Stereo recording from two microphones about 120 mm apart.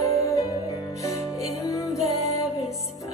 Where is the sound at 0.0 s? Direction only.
25° left (ahead or behind).